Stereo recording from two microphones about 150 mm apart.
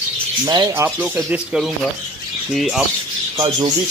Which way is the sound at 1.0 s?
5° right (ahead or behind).